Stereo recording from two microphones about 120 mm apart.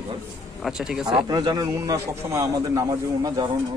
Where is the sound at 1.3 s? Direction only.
35° right (ahead or behind).